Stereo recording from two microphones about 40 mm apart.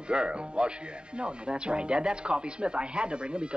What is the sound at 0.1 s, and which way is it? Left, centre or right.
Speech, right.